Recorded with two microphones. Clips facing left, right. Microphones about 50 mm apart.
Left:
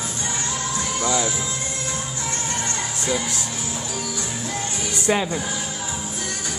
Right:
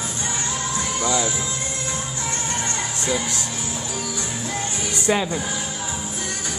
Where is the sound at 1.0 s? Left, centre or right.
Centre.